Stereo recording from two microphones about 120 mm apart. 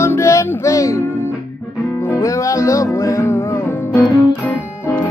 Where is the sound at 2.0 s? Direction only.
25° left (ahead or behind).